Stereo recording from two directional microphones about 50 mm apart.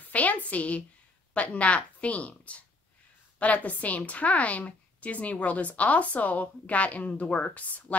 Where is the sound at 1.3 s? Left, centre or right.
Left.